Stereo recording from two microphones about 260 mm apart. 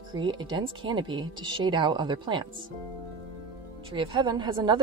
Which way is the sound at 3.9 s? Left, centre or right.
Centre.